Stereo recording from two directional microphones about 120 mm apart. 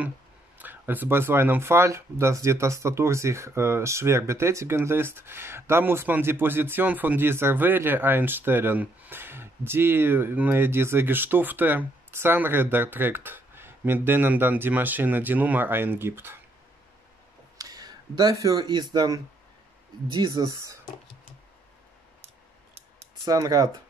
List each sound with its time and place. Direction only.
0.6 s speech: 15° right (ahead or behind)
17.6 s speech: 30° right (ahead or behind)
23.2 s speech: 30° right (ahead or behind)